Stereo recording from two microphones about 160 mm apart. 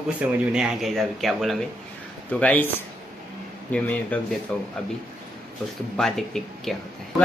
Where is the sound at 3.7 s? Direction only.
10° left (ahead or behind).